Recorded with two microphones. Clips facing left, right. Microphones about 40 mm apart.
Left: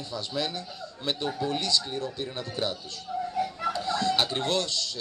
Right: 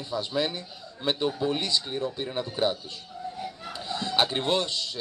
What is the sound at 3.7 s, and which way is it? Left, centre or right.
Chicken, right.